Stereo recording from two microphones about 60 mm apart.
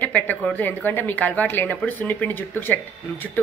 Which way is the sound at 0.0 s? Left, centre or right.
Left.